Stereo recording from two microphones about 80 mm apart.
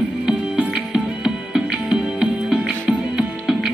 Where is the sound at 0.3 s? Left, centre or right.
Centre.